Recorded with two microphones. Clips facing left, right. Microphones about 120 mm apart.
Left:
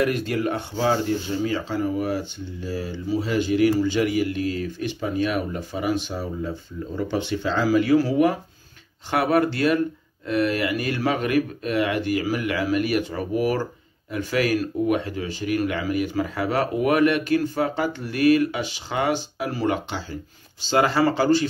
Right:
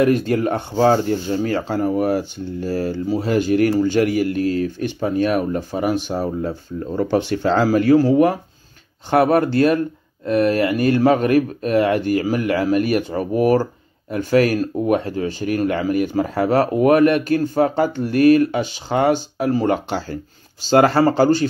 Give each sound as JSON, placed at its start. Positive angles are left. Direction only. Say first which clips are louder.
{"t": 0.3, "sound": "speech", "louder": "right 5 dB", "side_deg": -40}